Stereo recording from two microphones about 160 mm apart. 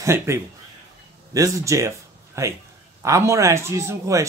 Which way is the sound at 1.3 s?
20° right (ahead or behind).